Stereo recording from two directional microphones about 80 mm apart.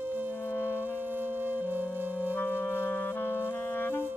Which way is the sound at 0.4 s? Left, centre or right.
Left.